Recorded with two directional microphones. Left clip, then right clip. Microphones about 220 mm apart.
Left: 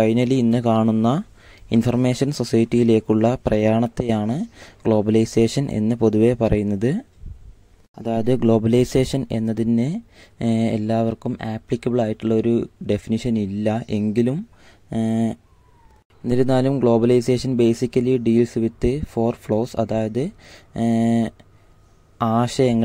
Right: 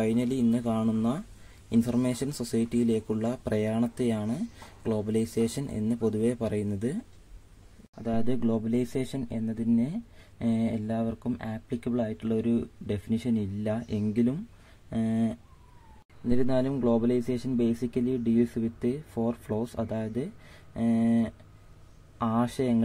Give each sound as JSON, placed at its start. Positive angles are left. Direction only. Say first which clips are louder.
{"t": 0.0, "sound": "speech", "louder": "left 9 dB", "side_deg": 40}
{"t": 8.0, "sound": "speech", "louder": "left 10 dB", "side_deg": 30}